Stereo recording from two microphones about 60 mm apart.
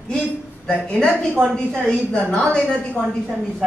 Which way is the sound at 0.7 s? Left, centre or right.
Centre.